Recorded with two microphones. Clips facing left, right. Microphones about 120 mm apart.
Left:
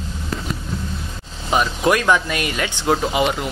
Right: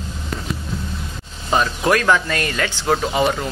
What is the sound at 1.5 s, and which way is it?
Speech, 15° left (ahead or behind).